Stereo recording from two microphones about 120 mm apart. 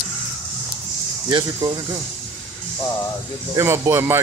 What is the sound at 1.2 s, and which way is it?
Speech, 35° right (ahead or behind).